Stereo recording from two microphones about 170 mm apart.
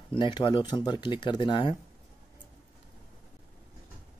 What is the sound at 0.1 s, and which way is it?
Speech, 25° left (ahead or behind).